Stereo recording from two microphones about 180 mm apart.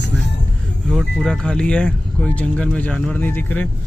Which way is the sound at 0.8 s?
Centre (ahead or behind).